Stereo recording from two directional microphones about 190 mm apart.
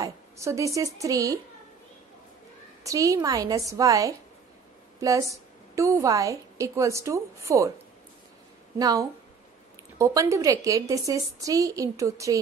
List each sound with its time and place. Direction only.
0.0 s a woman's voice: 15° right (ahead or behind)
2.8 s a woman's voice: 15° right (ahead or behind)
8.7 s a woman's voice: 20° right (ahead or behind)